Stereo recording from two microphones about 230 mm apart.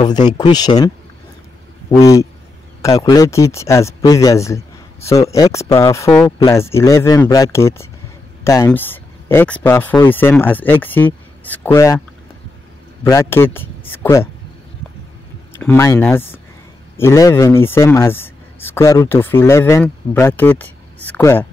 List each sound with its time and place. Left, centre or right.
0.4 s speech: centre
13.0 s speech: centre
15.5 s speech: centre